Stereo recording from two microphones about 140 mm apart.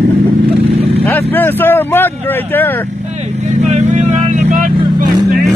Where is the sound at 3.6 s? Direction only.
60° right (ahead or behind); by 5.0 s 75° right (ahead or behind).